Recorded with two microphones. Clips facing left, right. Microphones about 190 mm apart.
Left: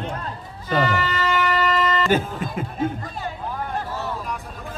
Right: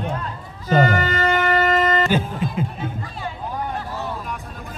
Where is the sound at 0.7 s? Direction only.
45° right (ahead or behind).